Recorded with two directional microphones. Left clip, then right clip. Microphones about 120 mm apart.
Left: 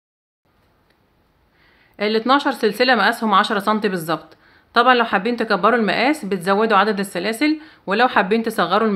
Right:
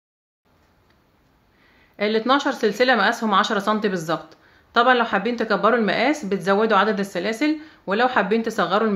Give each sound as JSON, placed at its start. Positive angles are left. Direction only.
{"t": 1.6, "sound": "speech", "side_deg": 25}